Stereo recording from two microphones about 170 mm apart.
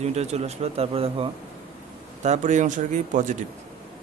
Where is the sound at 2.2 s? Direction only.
45° right (ahead or behind).